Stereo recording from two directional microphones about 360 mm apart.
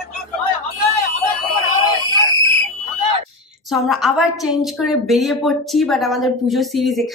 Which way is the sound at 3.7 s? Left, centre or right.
Centre.